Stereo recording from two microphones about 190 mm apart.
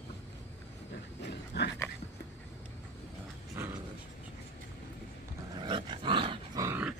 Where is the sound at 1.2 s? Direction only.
65° left (ahead or behind).